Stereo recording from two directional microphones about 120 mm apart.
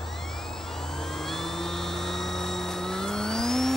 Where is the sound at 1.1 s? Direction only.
5° left (ahead or behind).